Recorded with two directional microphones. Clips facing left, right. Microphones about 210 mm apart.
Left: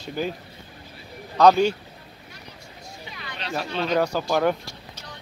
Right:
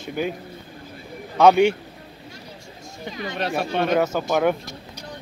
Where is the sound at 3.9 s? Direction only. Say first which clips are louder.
Left 2 dB; centre (ahead or behind).